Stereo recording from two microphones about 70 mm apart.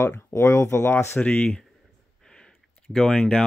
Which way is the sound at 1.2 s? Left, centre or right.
Left.